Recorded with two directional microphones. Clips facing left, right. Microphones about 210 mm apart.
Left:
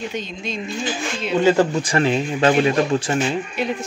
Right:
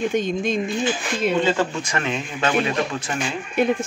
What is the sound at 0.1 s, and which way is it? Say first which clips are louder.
Speech: right 7 dB; 50° right (ahead or behind).